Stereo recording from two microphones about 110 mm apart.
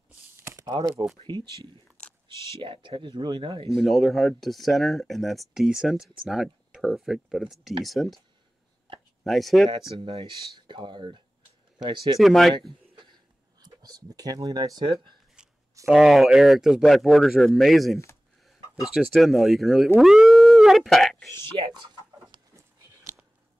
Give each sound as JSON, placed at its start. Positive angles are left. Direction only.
{"t": 0.4, "sound": "computer keyboard", "side_deg": -30}
{"t": 2.6, "sound": "speech", "side_deg": -50}
{"t": 3.7, "sound": "speech", "side_deg": 0}
{"t": 9.2, "sound": "speech", "side_deg": 0}
{"t": 9.9, "sound": "speech", "side_deg": -50}
{"t": 12.2, "sound": "speech", "side_deg": 0}
{"t": 13.6, "sound": "speech", "side_deg": -40}
{"t": 15.4, "sound": "a sound", "side_deg": -5}
{"t": 15.9, "sound": "speech", "side_deg": -5}
{"t": 20.0, "sound": "cat", "side_deg": -5}
{"t": 21.6, "sound": "speech", "side_deg": -60}